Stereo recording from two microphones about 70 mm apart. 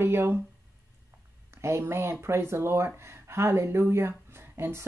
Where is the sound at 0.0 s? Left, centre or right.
Right.